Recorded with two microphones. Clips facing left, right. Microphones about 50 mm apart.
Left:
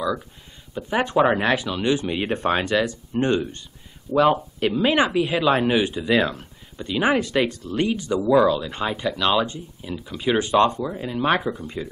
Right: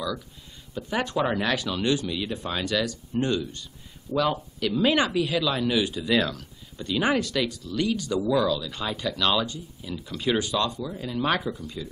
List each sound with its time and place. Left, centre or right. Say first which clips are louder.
0.7 s speech: left 6 dB; left
2.0 s speech: left 8 dB; left
2.6 s speech: left 5 dB; left
4.7 s speech: left 2 dB; left
7.3 s speech: left 5 dB; left; by 10.3 s centre
10.3 s speech: left 8 dB; left
10.8 s speech: left 4 dB; left